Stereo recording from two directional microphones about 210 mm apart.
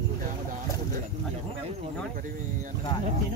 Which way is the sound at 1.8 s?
40° right (ahead or behind).